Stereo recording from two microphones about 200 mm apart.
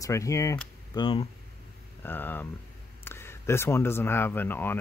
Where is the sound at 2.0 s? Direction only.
10° left (ahead or behind).